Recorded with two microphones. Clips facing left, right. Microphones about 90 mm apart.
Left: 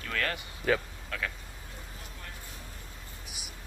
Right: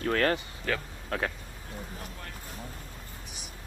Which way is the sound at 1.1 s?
35° right (ahead or behind).